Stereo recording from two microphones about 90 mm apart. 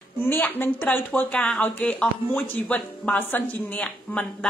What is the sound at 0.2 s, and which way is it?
A woman's voice, 20° left (ahead or behind).